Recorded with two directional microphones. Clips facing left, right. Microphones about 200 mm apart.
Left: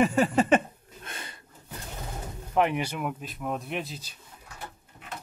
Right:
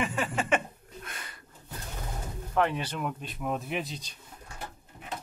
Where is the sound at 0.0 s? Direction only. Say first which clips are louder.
Left 8 dB; 40° left (ahead or behind).